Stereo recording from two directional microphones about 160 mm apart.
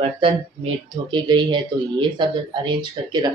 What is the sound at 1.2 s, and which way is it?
Speech, 30° right (ahead or behind).